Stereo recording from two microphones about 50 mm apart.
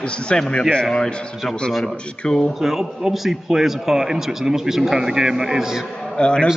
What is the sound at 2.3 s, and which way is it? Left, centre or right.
Speech, centre.